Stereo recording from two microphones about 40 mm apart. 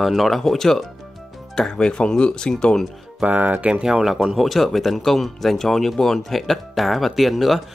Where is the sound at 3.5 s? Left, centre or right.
Right.